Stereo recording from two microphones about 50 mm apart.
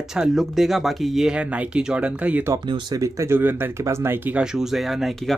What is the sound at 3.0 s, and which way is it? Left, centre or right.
Speech, right.